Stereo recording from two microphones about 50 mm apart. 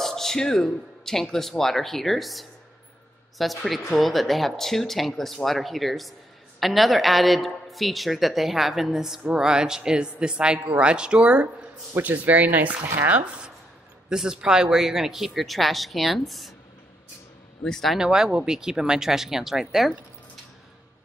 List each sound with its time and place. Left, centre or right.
0.0 s a woman's voice: centre; by 12.8 s right
14.0 s a woman's voice: centre
17.9 s speech: centre